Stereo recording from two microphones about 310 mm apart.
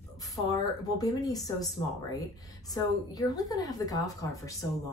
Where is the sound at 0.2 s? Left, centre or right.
Centre.